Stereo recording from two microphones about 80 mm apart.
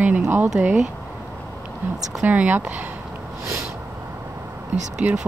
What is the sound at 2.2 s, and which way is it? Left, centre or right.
Speech, right.